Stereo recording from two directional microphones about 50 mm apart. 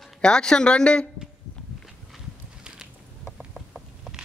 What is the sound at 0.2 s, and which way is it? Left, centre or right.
Speech, centre.